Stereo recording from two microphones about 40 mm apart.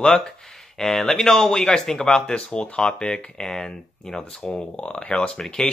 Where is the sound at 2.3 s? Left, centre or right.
Left.